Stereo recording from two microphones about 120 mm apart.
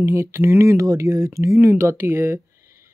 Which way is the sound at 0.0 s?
20° right (ahead or behind).